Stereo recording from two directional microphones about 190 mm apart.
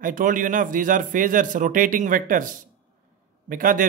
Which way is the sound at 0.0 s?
45° right (ahead or behind).